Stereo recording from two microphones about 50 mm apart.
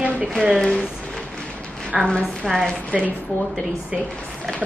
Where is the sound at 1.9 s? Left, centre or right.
Centre.